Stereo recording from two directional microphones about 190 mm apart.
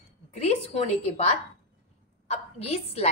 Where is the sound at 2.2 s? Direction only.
35° left (ahead or behind).